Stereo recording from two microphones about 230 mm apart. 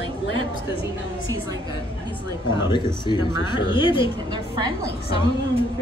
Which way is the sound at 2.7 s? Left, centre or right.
Centre.